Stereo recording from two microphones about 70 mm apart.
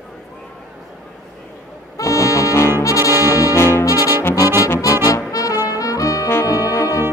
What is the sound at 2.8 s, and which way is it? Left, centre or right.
Brass instrument, left.